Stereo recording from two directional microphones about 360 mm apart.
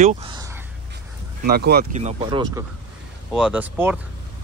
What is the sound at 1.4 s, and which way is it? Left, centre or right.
Speech, right.